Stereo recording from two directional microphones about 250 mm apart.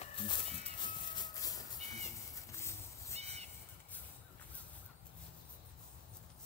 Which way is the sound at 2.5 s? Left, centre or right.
Centre.